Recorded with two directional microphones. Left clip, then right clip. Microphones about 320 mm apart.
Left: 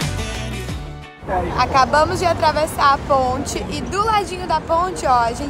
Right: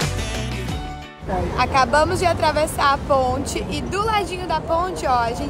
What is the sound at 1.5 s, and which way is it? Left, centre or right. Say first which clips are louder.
Speech: left 2 dB; centre.